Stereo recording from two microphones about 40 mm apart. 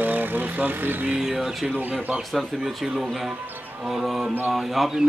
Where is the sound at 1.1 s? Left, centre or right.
Centre.